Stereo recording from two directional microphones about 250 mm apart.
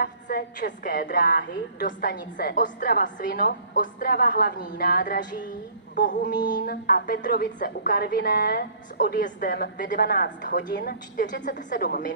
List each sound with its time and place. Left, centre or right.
0.0 s a woman's voice: left